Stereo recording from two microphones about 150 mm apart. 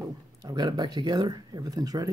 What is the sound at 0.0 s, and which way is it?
Speech, 25° right (ahead or behind).